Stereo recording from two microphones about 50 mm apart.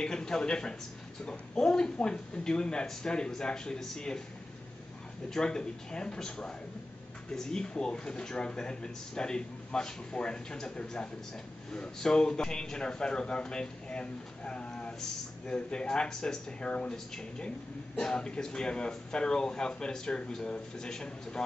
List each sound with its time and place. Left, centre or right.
0.0 s speech: centre
5.3 s speech: centre